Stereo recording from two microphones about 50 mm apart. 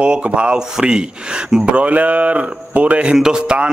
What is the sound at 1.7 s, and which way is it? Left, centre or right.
A man's voice, right.